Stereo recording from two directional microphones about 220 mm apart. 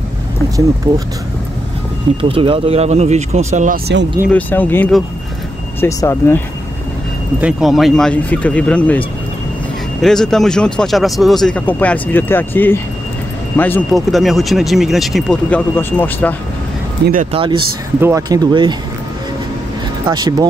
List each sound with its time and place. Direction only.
0.9 s speech: 20° right (ahead or behind)
2.2 s speech: 25° right (ahead or behind)
4.3 s speech: 5° left (ahead or behind)
7.3 s speech: 5° right (ahead or behind)
10.0 s speech: centre (ahead or behind)
17.0 s speech: 40° right (ahead or behind)
17.3 s speech: 25° right (ahead or behind)
20.1 s speech: 20° right (ahead or behind)